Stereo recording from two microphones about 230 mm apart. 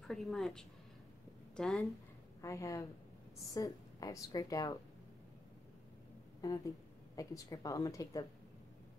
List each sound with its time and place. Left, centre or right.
0.1 s speech: centre
2.4 s a woman's voice: centre
6.4 s a woman's voice: centre